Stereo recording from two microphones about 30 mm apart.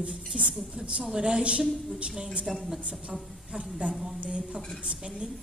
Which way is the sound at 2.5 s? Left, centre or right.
Centre.